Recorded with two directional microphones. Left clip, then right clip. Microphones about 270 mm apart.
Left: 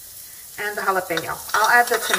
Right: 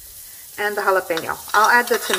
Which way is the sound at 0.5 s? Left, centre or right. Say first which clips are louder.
Right 3 dB; right.